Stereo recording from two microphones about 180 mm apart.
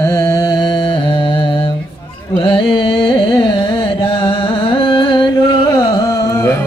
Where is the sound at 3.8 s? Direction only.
30° left (ahead or behind).